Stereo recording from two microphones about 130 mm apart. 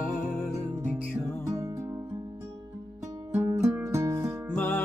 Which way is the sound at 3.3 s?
15° right (ahead or behind).